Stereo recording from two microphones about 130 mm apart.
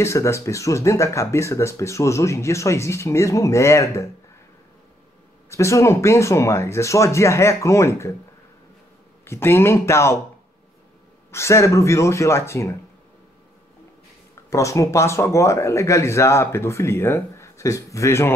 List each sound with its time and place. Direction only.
0.0 s speech: 20° left (ahead or behind)
5.5 s speech: 20° left (ahead or behind)
9.2 s speech: 20° left (ahead or behind)
11.3 s speech: 20° left (ahead or behind)
14.5 s speech: 25° left (ahead or behind)